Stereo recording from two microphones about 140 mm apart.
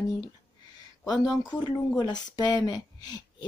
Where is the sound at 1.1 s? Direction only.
30° left (ahead or behind).